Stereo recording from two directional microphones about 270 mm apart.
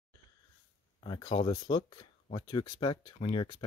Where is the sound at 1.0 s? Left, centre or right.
Centre.